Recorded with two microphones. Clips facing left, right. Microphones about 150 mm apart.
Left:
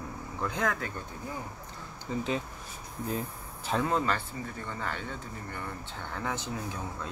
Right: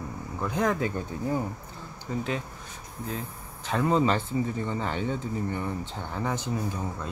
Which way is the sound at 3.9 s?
15° right (ahead or behind).